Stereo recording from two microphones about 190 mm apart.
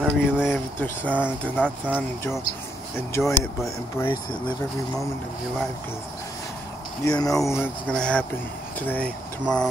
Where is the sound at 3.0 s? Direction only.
15° left (ahead or behind).